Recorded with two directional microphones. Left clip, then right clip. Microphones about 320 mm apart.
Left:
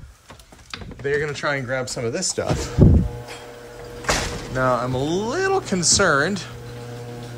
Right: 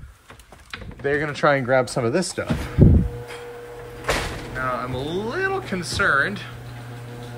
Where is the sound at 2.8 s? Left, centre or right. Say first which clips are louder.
Even; right.